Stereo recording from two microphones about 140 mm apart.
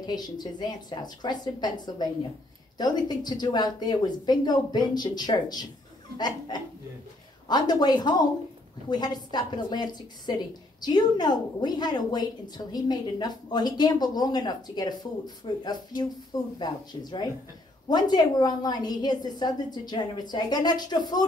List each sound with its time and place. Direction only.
0.0 s a woman's voice: 30° left (ahead or behind)
6.1 s laughter: 30° left (ahead or behind)
7.4 s a woman's voice: 30° left (ahead or behind)